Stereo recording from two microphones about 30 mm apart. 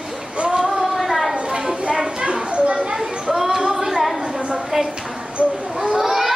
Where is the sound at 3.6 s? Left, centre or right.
Centre.